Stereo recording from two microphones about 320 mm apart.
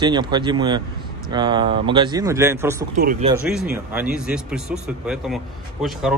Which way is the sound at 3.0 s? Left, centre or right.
Right.